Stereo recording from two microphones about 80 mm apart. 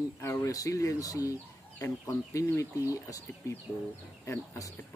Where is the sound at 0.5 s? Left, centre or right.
Left.